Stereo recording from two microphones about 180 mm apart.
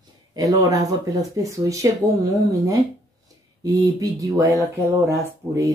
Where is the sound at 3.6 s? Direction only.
20° right (ahead or behind).